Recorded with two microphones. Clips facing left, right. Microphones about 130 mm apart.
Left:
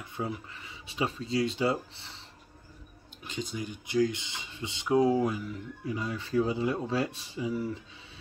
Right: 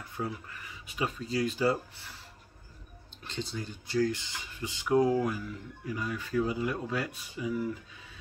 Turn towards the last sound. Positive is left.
turn(degrees=25)  # may be behind; listen again after turning